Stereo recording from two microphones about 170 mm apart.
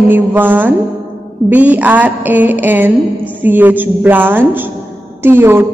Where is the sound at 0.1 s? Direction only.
10° right (ahead or behind).